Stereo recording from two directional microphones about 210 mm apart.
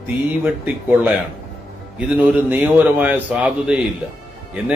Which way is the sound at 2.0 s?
5° right (ahead or behind).